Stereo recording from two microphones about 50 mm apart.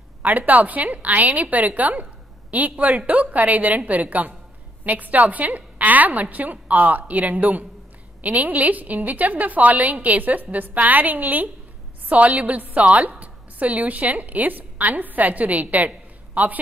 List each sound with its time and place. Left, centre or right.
0.2 s a woman's voice: right